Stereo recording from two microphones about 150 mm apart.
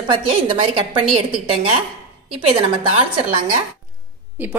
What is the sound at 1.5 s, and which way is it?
Speech, 40° right (ahead or behind).